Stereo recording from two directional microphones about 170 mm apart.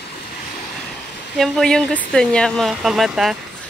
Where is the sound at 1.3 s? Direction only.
Centre (ahead or behind).